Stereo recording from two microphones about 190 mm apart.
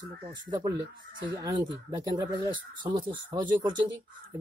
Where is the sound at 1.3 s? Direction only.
20° right (ahead or behind).